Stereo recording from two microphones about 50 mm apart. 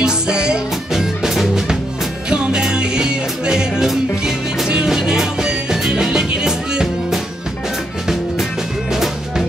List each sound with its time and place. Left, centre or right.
0.0 s music: centre
0.9 s music: centre
2.2 s music: centre